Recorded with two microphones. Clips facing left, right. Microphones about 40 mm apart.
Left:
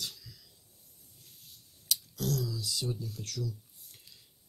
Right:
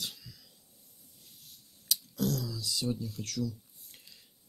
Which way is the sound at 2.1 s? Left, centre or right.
Right.